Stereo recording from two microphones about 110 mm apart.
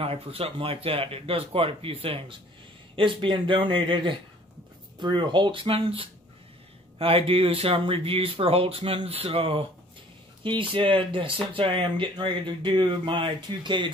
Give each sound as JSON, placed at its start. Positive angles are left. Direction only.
{"t": 0.0, "sound": "speech", "side_deg": -60}